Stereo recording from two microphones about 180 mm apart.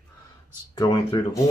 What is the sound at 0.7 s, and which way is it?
Speech, 20° left (ahead or behind).